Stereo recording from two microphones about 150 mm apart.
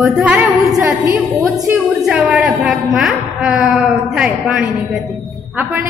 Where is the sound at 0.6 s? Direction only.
20° right (ahead or behind).